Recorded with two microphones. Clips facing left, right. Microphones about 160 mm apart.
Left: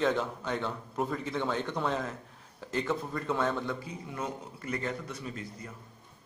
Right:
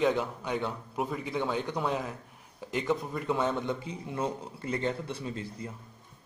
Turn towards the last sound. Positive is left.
turn(degrees=-25)  # may be behind; listen again after turning